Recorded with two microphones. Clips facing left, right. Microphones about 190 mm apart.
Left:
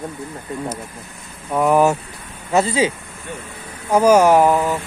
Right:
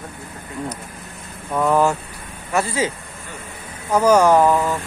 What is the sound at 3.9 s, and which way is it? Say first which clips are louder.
Speech: left 2 dB; 10° left (ahead or behind).